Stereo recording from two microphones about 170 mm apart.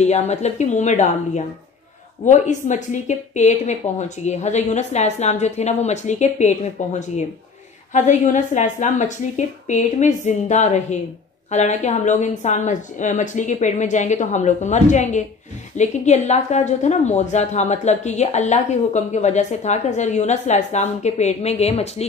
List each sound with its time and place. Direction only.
0.0 s a woman's voice: 40° left (ahead or behind)